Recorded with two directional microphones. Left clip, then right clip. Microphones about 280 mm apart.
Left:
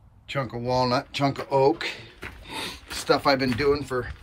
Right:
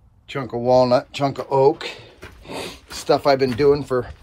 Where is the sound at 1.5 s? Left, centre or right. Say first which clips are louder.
Right 5 dB; centre.